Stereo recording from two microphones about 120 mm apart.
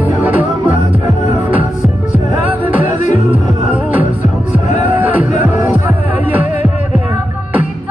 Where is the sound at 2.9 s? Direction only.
90° left.